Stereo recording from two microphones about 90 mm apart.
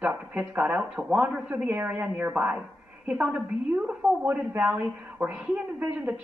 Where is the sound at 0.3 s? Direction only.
15° right (ahead or behind).